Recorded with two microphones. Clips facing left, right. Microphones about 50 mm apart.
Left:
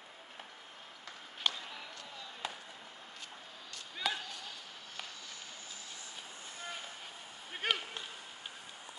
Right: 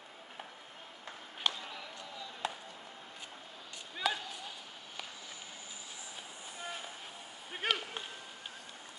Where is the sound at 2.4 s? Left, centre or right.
Centre.